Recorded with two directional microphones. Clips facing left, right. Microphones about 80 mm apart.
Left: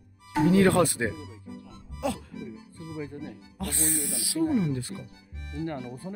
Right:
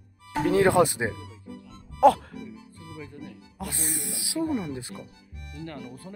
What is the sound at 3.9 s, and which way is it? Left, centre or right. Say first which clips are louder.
Speech: left 3 dB; right.